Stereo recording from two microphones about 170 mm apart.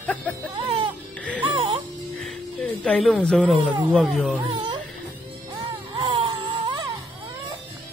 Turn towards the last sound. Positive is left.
turn(degrees=-30)  # may be behind; listen again after turning